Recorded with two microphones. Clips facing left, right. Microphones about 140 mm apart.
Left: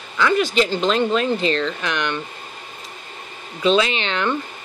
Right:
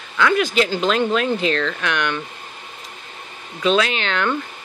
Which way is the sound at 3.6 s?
Centre (ahead or behind).